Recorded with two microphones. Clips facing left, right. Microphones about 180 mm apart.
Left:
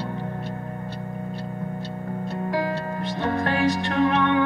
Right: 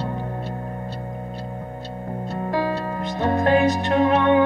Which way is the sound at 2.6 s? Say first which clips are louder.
Right 2 dB; 35° right (ahead or behind).